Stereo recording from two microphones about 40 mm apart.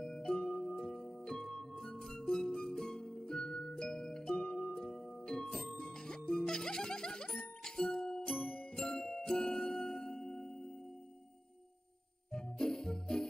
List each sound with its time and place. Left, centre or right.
0.0 s music: centre
12.3 s jingle bell: centre